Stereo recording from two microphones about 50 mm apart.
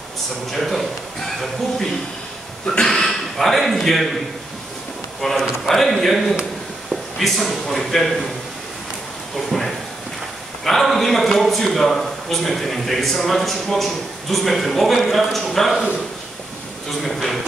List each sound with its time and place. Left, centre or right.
0.5 s a man's voice: centre
2.6 s a sound: centre
2.9 s speech: centre
5.2 s a man's voice: centre
9.5 s a man's voice: centre
17.0 s a man's voice: centre